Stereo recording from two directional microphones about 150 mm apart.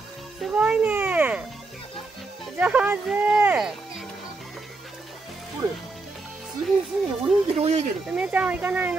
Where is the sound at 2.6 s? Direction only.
10° right (ahead or behind).